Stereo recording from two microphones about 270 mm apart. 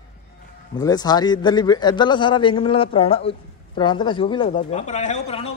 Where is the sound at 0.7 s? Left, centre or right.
Centre.